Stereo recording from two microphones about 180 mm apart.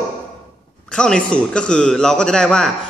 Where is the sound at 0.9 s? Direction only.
5° left (ahead or behind).